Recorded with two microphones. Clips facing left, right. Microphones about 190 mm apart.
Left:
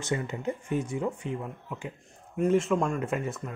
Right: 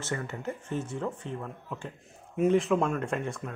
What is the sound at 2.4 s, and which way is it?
Speech, centre (ahead or behind).